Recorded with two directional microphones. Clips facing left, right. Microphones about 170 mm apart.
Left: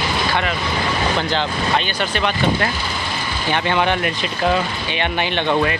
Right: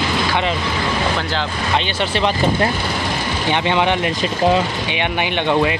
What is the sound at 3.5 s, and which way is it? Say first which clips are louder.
Speech: right 1 dB; 20° right (ahead or behind).